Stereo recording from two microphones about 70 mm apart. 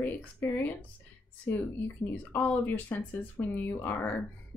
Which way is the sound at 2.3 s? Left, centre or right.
Left.